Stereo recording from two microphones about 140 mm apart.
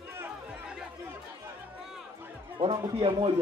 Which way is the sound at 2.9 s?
35° right (ahead or behind).